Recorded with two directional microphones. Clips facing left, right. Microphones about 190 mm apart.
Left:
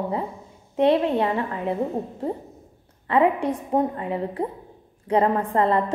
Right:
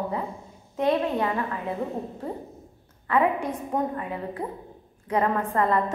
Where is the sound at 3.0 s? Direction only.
30° left (ahead or behind).